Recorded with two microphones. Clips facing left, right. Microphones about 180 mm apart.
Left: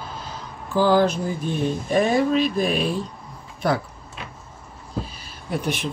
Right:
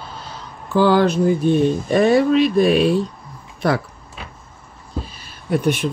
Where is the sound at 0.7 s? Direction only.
70° right (ahead or behind).